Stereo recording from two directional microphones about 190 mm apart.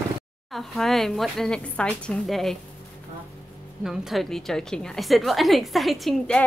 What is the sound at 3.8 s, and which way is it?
A woman's voice, centre (ahead or behind).